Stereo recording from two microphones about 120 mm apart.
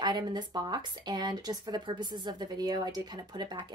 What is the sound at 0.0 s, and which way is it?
Speech, 40° right (ahead or behind).